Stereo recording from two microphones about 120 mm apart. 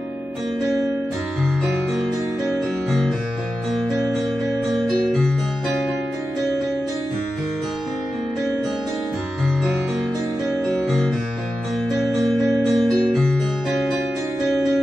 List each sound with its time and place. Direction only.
4.7 s music: 5° left (ahead or behind)
10.7 s guitar: 5° left (ahead or behind)
12.0 s music: centre (ahead or behind)